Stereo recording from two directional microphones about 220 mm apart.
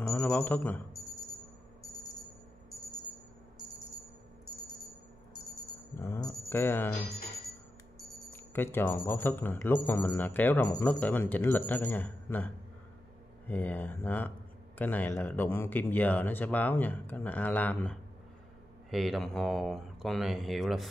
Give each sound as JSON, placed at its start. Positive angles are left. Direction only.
{"t": 0.0, "sound": "speech", "side_deg": 5}
{"t": 5.9, "sound": "speech", "side_deg": 10}
{"t": 8.4, "sound": "speech", "side_deg": 10}